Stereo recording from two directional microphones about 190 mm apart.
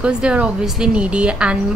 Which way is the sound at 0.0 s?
5° right (ahead or behind).